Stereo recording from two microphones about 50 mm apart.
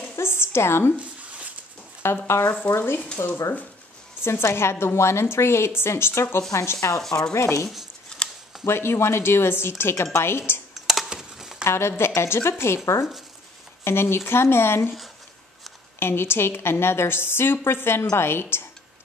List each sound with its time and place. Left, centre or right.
0.1 s a woman's voice: left
2.2 s a woman's voice: left
2.7 s a woman's voice: left
3.2 s a woman's voice: left
6.5 s speech: left
7.0 s speech: centre
7.3 s speech: left
7.6 s speech: centre
8.6 s a woman's voice: left
11.1 s dishes: centre
11.6 s a woman's voice: left
16.0 s a woman's voice: left